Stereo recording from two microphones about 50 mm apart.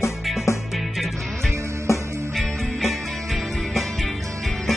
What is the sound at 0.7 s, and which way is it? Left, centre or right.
Music, centre.